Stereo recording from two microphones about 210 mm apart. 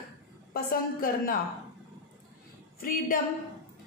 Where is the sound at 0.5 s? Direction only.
45° left (ahead or behind).